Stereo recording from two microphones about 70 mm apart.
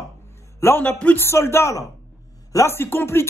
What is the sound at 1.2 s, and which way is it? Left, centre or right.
A man's voice, left.